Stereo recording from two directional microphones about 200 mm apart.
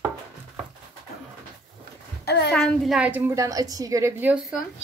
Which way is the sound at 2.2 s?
55° left (ahead or behind).